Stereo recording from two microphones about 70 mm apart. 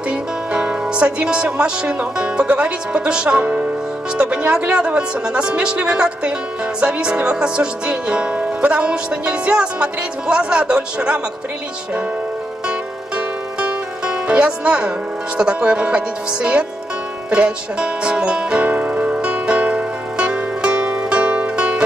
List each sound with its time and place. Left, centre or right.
0.1 s speech: centre
4.2 s music: centre
13.6 s music: centre